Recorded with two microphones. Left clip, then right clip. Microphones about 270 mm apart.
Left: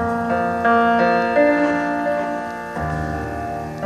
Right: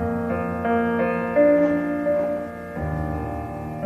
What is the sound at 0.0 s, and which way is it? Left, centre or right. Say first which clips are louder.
Music: left 6 dB; left.